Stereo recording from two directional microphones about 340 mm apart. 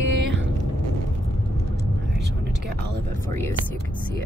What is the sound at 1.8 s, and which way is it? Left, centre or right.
Vehicle, right.